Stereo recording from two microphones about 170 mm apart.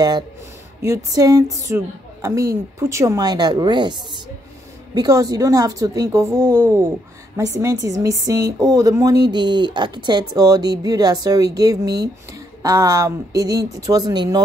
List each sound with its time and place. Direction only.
0.8 s speech: 20° right (ahead or behind)
4.9 s speech: 25° right (ahead or behind)